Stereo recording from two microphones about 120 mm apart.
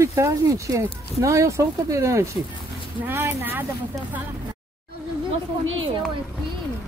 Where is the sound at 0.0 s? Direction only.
25° right (ahead or behind).